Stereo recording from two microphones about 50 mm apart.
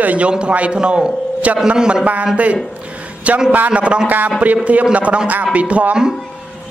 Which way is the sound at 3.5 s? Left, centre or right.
Right.